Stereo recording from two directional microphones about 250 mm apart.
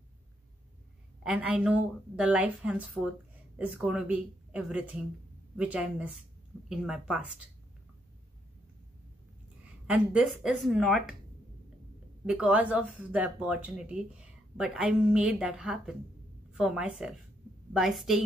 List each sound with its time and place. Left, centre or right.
1.2 s speech: centre
9.8 s speech: centre
12.3 s speech: centre